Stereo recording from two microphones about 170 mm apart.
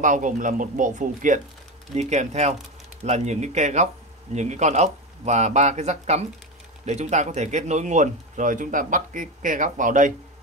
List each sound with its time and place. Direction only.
0.0 s speech: 50° right (ahead or behind)